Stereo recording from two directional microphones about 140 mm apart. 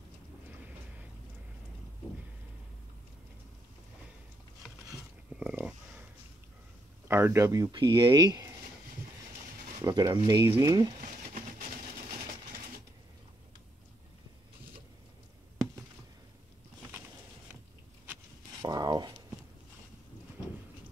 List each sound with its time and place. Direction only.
5.3 s a sound: 10° right (ahead or behind)
7.1 s speech: 15° right (ahead or behind)
7.7 s speech: 35° right (ahead or behind)
9.8 s speech: 25° right (ahead or behind)
11.2 s vehicle: 60° right (ahead or behind)
18.6 s a sound: 30° right (ahead or behind)